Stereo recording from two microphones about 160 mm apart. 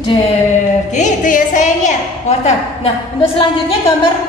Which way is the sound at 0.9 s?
50° left (ahead or behind).